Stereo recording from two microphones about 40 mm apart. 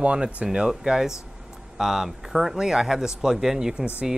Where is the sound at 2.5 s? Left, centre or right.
Centre.